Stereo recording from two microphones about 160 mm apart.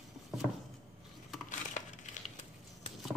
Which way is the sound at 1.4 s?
50° left (ahead or behind).